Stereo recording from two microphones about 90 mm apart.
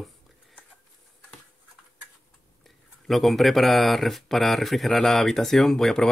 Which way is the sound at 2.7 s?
Centre (ahead or behind).